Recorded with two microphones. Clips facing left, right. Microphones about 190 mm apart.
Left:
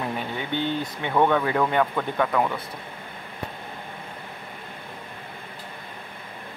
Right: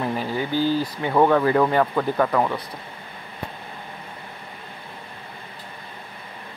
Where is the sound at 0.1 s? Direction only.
Centre (ahead or behind).